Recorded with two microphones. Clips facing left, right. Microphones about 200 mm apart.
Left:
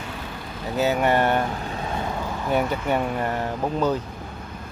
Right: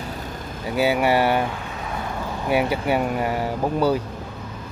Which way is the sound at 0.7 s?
10° right (ahead or behind).